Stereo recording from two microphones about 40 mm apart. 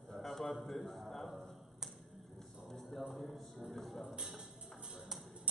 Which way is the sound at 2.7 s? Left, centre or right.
Centre.